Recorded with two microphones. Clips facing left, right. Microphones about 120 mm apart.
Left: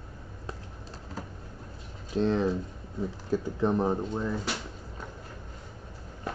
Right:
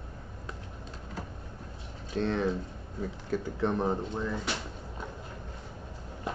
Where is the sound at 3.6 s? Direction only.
5° left (ahead or behind).